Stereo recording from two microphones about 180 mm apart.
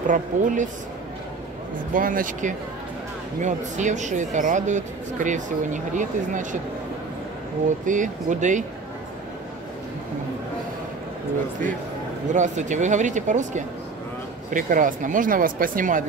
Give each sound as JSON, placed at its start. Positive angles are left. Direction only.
{"t": 0.1, "sound": "speech", "side_deg": -45}
{"t": 2.0, "sound": "speech", "side_deg": -50}
{"t": 7.8, "sound": "speech", "side_deg": -45}
{"t": 12.4, "sound": "speech", "side_deg": -45}